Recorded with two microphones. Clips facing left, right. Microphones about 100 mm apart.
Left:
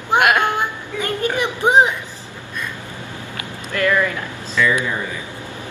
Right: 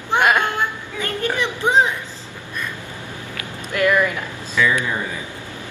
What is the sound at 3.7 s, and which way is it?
Speech, 15° right (ahead or behind).